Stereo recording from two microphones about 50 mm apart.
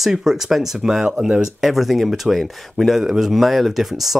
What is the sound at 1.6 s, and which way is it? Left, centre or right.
Speech, centre.